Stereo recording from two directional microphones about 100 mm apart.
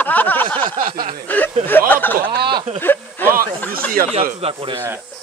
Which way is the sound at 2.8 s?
20° left (ahead or behind).